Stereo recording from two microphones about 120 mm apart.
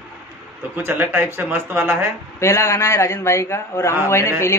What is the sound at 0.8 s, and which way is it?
A man's voice, 15° right (ahead or behind).